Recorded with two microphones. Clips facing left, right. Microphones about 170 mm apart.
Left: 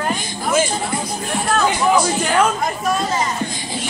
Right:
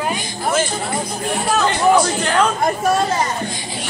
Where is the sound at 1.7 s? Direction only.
5° left (ahead or behind).